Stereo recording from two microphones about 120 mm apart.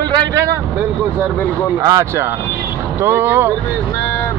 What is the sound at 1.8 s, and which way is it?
Speech, 25° right (ahead or behind).